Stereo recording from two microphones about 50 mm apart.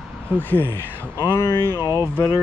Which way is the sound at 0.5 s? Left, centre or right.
Left.